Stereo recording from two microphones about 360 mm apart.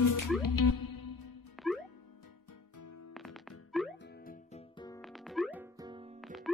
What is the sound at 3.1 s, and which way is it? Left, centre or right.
Music, centre.